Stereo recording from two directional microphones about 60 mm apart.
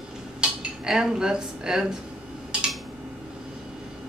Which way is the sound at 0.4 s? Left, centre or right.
Centre.